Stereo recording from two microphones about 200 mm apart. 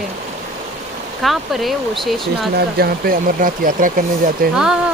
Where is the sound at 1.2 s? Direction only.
Centre (ahead or behind).